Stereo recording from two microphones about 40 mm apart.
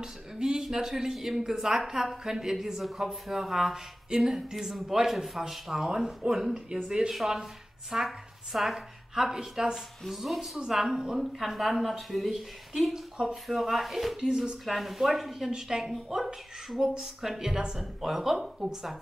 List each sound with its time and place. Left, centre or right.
0.0 s a woman's voice: centre
10.0 s speech: centre
10.7 s speech: centre
11.3 s speech: centre
14.6 s speech: centre